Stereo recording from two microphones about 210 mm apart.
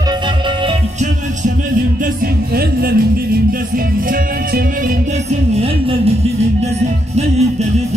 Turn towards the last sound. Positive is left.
turn(degrees=-30)  # may be behind; listen again after turning